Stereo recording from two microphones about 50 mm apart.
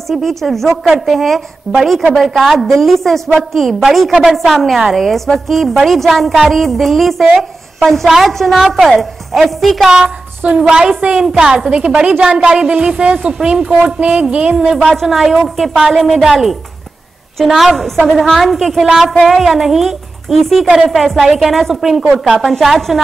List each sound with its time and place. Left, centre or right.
0.1 s a woman's voice: centre
10.4 s a woman's voice: right
10.7 s a woman's voice: centre
14.8 s a woman's voice: centre
15.0 s a woman's voice: centre